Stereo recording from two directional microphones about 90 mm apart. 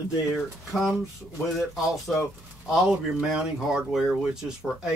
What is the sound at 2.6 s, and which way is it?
Speech, 5° right (ahead or behind).